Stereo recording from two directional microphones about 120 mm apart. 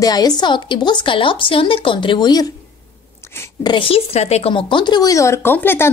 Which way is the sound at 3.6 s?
45° left (ahead or behind).